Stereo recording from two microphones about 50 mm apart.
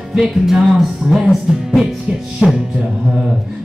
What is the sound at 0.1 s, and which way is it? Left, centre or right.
Music, centre.